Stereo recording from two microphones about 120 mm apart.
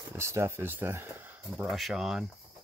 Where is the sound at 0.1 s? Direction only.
20° right (ahead or behind).